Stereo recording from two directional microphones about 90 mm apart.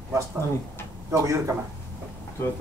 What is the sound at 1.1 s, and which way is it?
Speech, 35° right (ahead or behind).